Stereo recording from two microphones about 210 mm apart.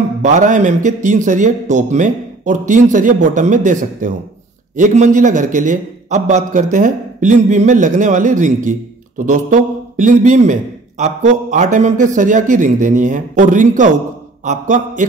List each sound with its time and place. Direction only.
0.2 s a man's voice: 35° right (ahead or behind)